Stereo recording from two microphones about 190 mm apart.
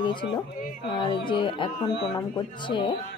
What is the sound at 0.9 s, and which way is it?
Speech, 25° left (ahead or behind).